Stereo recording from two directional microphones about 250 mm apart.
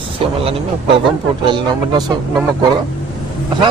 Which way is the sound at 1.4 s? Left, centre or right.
Centre.